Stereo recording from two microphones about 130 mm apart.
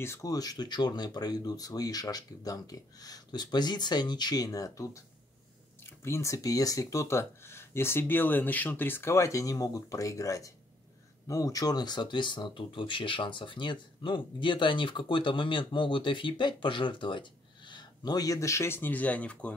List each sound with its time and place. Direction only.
0.0 s speech: 25° left (ahead or behind)
6.0 s speech: 20° left (ahead or behind)